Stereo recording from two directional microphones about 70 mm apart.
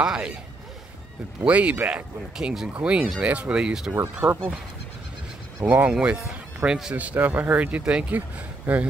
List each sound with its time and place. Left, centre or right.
0.0 s speech: centre
1.4 s speech: centre
2.3 s speech: centre
2.7 s speech: centre
3.9 s speech: right
5.7 s speech: centre